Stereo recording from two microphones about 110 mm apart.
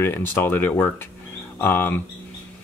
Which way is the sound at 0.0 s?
20° left (ahead or behind).